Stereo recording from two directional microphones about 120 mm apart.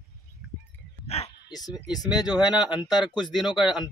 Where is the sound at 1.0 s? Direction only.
60° left (ahead or behind).